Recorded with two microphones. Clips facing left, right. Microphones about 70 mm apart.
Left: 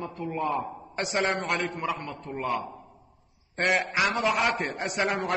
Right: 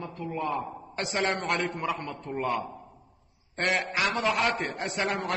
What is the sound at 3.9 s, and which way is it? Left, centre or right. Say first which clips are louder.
A man's voice: left 2 dB; centre.